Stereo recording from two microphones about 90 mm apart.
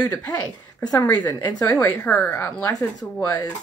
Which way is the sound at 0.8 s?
20° left (ahead or behind).